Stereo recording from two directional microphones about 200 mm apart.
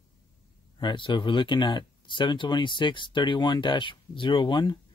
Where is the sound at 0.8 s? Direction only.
25° left (ahead or behind).